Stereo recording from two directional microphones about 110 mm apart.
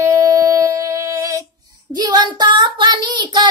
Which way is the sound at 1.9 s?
40° right (ahead or behind).